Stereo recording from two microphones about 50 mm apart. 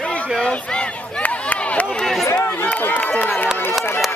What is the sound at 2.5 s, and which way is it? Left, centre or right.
Run, left.